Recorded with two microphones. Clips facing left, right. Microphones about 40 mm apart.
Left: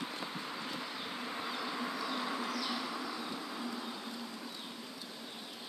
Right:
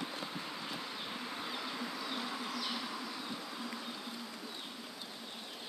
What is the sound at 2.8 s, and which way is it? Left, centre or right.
Vehicle, centre.